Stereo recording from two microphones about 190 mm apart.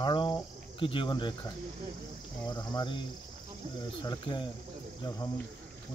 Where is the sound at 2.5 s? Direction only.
20° left (ahead or behind).